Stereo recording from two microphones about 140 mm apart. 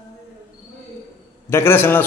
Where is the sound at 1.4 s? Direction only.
15° left (ahead or behind).